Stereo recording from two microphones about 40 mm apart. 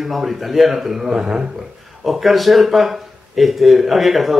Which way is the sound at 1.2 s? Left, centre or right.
Right.